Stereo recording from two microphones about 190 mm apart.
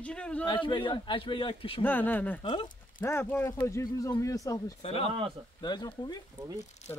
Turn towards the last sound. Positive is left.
turn(degrees=35)  # may be behind; listen again after turning